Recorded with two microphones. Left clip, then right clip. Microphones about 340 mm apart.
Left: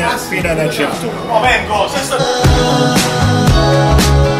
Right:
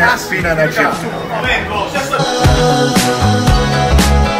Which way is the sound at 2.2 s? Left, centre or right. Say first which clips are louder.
Right 1 dB; centre.